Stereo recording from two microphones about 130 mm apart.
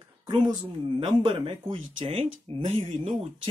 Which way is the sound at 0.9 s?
45° right (ahead or behind).